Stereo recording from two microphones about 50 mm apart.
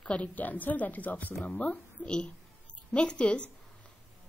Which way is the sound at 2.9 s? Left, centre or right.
Left.